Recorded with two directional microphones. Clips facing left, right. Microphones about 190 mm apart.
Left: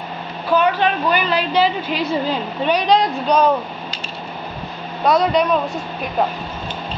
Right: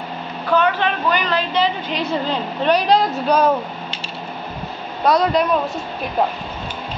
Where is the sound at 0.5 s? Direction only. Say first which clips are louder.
Left 1 dB; 10° left (ahead or behind); by 3.4 s 5° right (ahead or behind).